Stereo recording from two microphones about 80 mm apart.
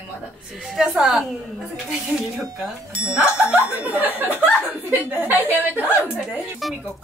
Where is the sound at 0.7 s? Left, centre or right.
Centre.